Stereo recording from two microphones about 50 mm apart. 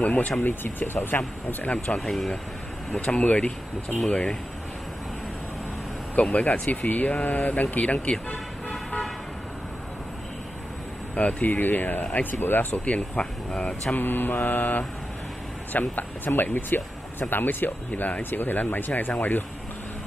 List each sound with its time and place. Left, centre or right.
0.0 s speech: left
0.4 s speech: left
2.0 s speech: centre
2.9 s speech: left
6.3 s speech: left
11.1 s speech: left
12.8 s speech: left
13.9 s speech: left